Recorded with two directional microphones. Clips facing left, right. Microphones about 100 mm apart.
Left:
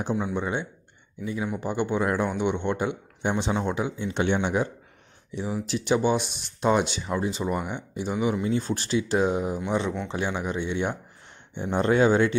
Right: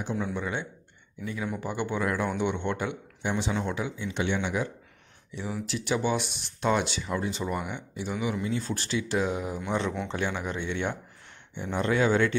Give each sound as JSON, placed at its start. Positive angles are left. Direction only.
{"t": 0.1, "sound": "speech", "side_deg": 20}
{"t": 4.0, "sound": "speech", "side_deg": 35}
{"t": 5.3, "sound": "speech", "side_deg": 20}
{"t": 8.6, "sound": "speech", "side_deg": 20}
{"t": 9.6, "sound": "speech", "side_deg": 10}
{"t": 11.5, "sound": "speech", "side_deg": 30}
{"t": 12.1, "sound": "speech", "side_deg": 20}